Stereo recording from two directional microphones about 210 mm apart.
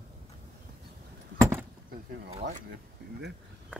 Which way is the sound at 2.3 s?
35° right (ahead or behind).